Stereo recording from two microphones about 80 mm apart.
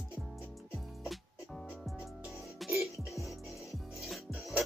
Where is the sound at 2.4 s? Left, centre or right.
Centre.